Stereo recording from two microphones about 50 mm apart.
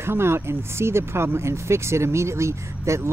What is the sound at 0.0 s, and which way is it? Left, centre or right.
Speech, right.